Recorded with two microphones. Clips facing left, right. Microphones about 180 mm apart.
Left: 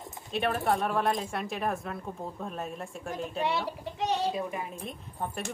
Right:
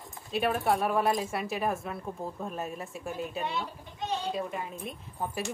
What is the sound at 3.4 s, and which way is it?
Speech, 75° left (ahead or behind).